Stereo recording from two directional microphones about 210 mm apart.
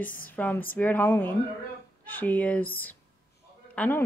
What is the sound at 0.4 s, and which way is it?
A woman's voice, 10° left (ahead or behind).